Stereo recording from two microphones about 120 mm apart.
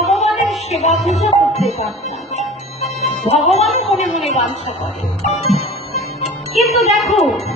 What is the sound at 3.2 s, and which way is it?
Speech, 60° left (ahead or behind).